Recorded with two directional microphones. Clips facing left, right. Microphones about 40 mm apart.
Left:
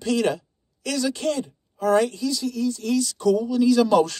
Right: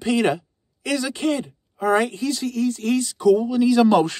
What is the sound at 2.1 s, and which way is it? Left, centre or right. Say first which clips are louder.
Speech: right 2 dB; right.